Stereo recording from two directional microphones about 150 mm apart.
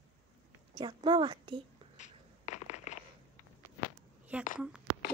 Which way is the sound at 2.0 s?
55° left (ahead or behind).